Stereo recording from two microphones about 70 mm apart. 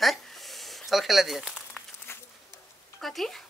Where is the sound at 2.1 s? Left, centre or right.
Left.